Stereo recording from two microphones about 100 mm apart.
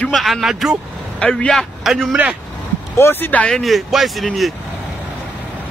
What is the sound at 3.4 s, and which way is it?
A man's voice, 5° left (ahead or behind).